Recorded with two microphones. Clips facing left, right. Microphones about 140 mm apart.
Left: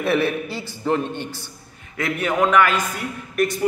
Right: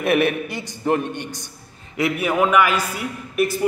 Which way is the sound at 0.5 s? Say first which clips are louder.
Right 1 dB; 15° right (ahead or behind).